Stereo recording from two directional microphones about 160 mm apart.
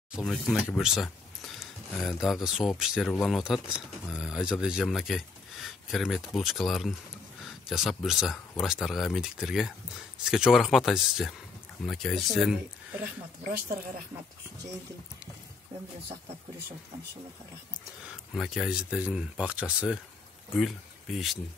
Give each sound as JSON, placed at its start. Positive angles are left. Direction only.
{"t": 0.1, "sound": "speech", "side_deg": 0}
{"t": 13.5, "sound": "speech", "side_deg": -70}
{"t": 18.0, "sound": "speech", "side_deg": 0}